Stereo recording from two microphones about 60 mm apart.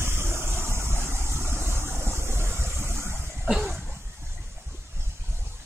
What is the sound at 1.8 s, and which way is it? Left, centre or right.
Waves, right.